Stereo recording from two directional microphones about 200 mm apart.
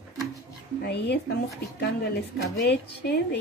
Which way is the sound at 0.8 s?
55° left (ahead or behind).